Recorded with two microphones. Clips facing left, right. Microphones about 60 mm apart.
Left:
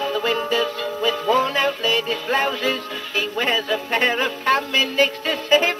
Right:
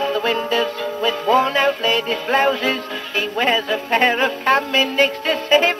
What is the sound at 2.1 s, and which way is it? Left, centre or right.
Music, right.